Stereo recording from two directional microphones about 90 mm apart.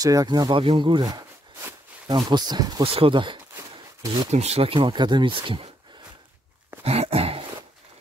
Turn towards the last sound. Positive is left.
turn(degrees=-90)